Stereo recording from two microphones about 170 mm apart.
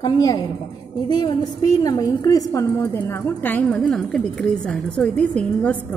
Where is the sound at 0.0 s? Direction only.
25° left (ahead or behind).